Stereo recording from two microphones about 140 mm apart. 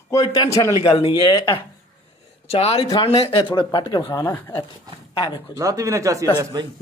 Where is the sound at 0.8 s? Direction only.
45° left (ahead or behind).